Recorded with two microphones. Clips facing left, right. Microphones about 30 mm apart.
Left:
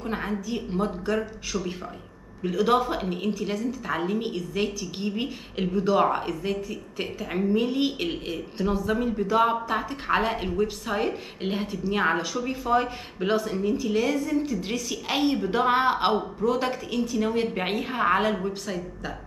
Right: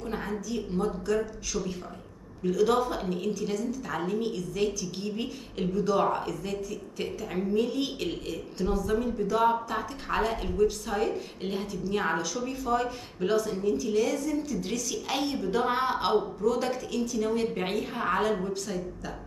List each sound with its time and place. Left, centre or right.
0.0 s a woman's voice: left